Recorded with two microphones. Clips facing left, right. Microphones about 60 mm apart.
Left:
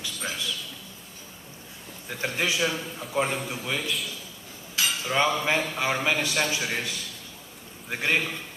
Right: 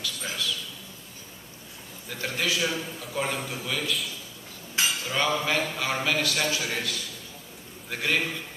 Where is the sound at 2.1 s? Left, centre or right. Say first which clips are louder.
Left 1 dB; left.